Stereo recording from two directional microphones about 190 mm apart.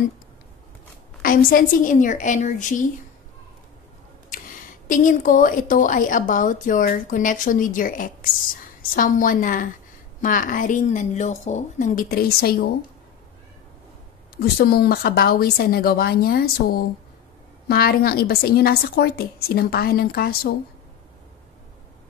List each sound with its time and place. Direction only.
1.2 s a woman's voice: 50° left (ahead or behind)
4.3 s a woman's voice: 45° left (ahead or behind)
14.3 s a woman's voice: 55° left (ahead or behind)